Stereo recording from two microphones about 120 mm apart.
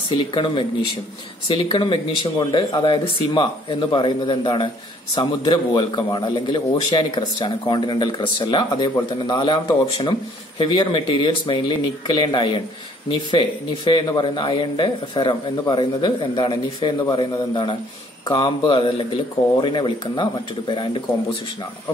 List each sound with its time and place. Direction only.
0.1 s a man's voice: 40° left (ahead or behind)